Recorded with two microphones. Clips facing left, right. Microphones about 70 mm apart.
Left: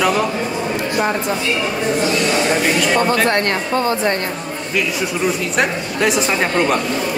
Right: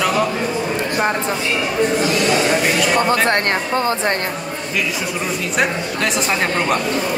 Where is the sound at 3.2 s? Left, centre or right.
Right.